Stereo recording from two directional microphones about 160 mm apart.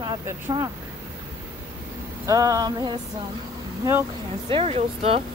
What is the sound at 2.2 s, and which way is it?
Speech, 20° right (ahead or behind).